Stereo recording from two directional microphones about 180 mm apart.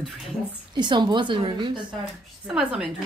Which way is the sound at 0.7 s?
25° right (ahead or behind).